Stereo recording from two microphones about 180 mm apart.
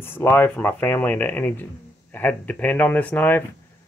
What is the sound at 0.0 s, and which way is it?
Speech, 10° left (ahead or behind).